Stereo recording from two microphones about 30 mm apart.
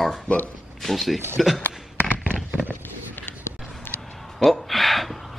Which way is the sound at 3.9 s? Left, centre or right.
Left.